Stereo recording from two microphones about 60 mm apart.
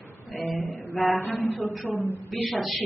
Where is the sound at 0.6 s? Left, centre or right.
Left.